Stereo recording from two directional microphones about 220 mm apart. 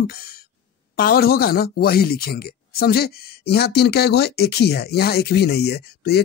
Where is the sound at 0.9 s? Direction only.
45° left (ahead or behind).